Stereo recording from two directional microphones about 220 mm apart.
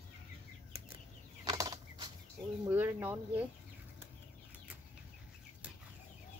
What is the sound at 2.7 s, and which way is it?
Speech, 10° right (ahead or behind).